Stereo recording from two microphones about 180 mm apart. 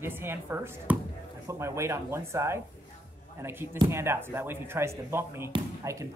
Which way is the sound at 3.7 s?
25° right (ahead or behind).